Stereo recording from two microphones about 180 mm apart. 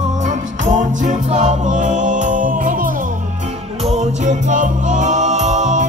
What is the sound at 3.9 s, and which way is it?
Music, 40° right (ahead or behind).